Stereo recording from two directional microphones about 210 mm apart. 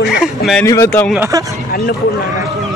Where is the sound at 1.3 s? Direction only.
15° right (ahead or behind).